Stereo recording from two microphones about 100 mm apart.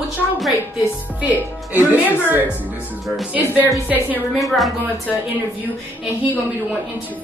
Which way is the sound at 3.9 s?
15° right (ahead or behind).